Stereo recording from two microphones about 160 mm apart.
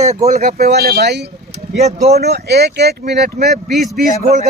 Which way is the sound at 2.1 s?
90° right.